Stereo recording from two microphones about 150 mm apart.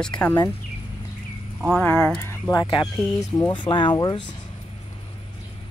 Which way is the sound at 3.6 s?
35° left (ahead or behind).